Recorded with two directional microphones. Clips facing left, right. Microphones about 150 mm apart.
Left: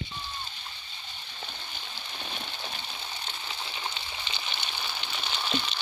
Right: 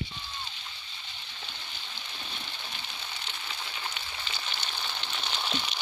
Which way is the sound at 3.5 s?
25° left (ahead or behind).